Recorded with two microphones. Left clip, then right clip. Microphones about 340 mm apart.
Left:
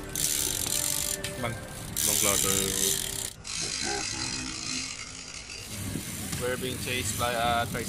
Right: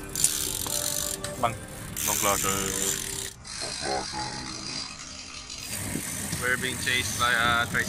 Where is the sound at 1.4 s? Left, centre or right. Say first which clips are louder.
Right 6 dB; centre.